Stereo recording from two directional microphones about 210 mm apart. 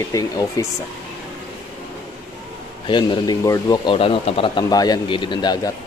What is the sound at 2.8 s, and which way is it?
Speech, 20° left (ahead or behind).